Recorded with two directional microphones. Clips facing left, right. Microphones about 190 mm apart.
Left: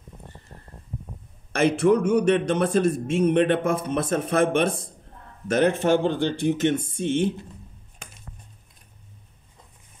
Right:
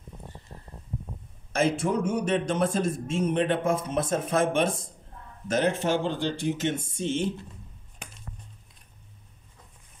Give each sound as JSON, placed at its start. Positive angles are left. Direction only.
{"t": 1.5, "sound": "a man's voice", "side_deg": 70}